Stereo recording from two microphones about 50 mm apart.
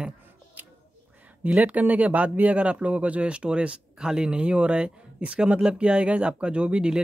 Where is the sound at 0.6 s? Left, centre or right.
Right.